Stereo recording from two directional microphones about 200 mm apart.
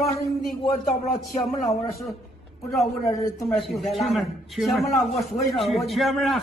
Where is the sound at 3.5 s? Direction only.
Centre (ahead or behind).